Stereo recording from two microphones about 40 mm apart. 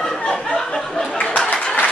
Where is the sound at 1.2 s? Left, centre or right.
Left.